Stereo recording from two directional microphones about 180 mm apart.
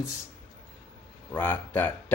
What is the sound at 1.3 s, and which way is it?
Speech, 10° left (ahead or behind).